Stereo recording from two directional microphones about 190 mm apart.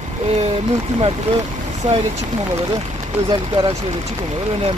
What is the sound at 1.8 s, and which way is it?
Speech, 30° right (ahead or behind).